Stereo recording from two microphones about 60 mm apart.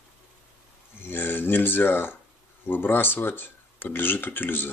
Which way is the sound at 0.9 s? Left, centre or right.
Left.